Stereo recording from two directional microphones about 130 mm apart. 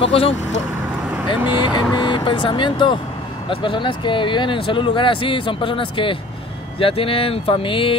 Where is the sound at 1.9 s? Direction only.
35° left (ahead or behind).